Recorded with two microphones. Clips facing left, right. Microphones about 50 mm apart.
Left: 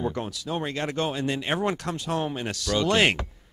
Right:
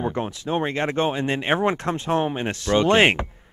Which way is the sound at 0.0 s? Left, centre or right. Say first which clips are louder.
Right 3 dB; right.